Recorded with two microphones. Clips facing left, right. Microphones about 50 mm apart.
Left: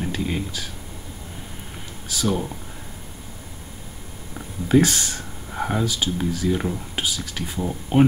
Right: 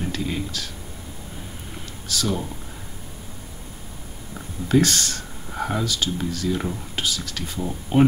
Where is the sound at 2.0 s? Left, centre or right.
Centre.